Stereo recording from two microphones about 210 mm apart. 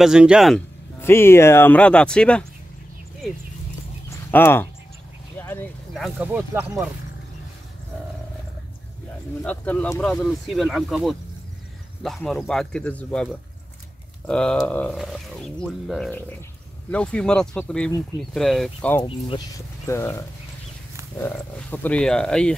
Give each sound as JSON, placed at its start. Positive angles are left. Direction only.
{"t": 0.0, "sound": "speech", "side_deg": -5}
{"t": 1.0, "sound": "speech", "side_deg": 10}
{"t": 4.3, "sound": "speech", "side_deg": 10}
{"t": 9.4, "sound": "speech", "side_deg": 5}
{"t": 18.9, "sound": "speech", "side_deg": 25}
{"t": 19.9, "sound": "speech", "side_deg": 10}